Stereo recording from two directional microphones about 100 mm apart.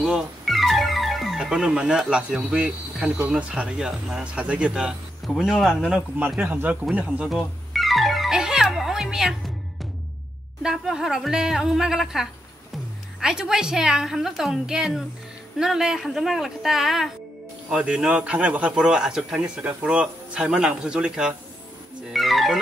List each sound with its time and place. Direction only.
0.0 s speech: centre (ahead or behind)
5.3 s a woman's voice: centre (ahead or behind)
5.9 s speech: 15° right (ahead or behind)
7.2 s music: centre (ahead or behind)
10.6 s a woman's voice: 5° right (ahead or behind)
22.1 s music: centre (ahead or behind)